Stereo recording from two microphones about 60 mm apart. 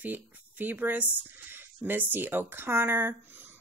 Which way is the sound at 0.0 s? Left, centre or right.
Right.